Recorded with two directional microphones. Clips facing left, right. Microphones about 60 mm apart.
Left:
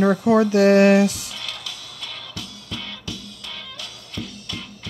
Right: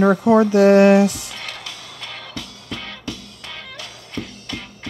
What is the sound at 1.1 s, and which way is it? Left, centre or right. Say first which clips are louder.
Music: right 2 dB; right.